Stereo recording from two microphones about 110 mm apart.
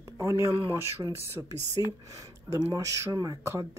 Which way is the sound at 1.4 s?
15° right (ahead or behind).